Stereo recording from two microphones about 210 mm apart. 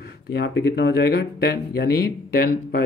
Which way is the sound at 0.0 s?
50° left (ahead or behind).